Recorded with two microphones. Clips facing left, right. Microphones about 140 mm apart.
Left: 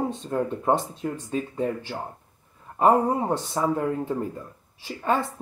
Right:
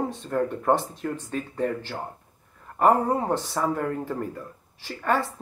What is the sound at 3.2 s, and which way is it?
Speech, 15° left (ahead or behind).